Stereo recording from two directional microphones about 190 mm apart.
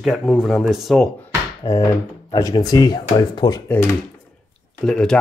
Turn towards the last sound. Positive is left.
turn(degrees=5)  # may be behind; listen again after turning